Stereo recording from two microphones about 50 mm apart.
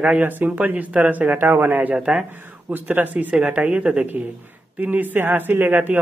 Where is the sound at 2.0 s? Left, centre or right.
Centre.